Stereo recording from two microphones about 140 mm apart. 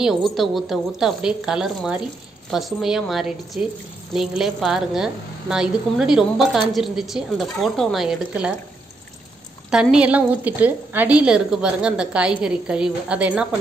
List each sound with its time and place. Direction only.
0.0 s a woman's voice: centre (ahead or behind)
9.7 s a woman's voice: 5° right (ahead or behind)